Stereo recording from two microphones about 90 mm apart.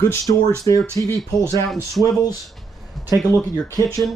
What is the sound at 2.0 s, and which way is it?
Speech, 45° left (ahead or behind).